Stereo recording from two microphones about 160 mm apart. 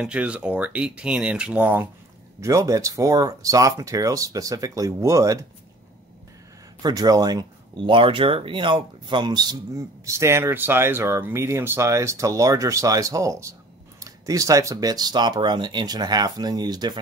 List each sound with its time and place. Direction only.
0.0 s speech: 5° right (ahead or behind)
6.8 s speech: 25° right (ahead or behind)